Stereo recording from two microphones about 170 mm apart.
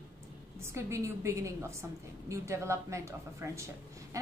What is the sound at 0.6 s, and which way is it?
A woman's voice, 15° right (ahead or behind).